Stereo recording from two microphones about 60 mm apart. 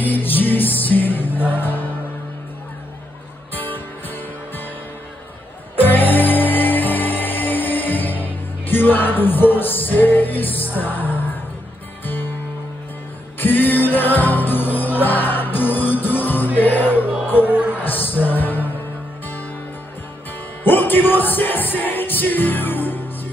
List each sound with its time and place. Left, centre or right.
0.0 s music: left
3.5 s music: left
5.8 s music: left
13.4 s music: left
17.5 s music: right
17.8 s music: left
20.6 s music: left